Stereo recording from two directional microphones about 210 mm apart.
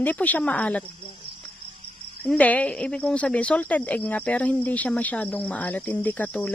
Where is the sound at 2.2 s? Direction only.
5° left (ahead or behind).